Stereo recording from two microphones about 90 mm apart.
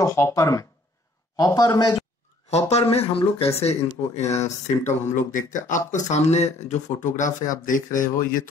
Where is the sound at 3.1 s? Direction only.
90° left.